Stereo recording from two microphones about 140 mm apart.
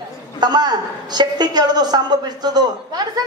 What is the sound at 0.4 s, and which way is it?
A woman's voice, 30° right (ahead or behind).